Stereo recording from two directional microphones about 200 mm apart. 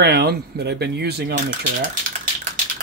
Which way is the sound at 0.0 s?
55° right (ahead or behind).